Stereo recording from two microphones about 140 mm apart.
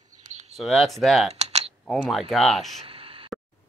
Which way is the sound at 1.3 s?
50° right (ahead or behind).